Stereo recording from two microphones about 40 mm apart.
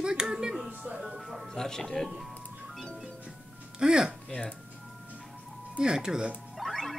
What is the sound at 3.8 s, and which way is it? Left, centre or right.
Speech, centre.